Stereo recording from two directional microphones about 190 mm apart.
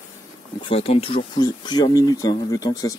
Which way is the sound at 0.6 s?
30° left (ahead or behind).